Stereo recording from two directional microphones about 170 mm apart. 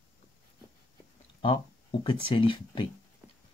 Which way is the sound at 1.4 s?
30° left (ahead or behind).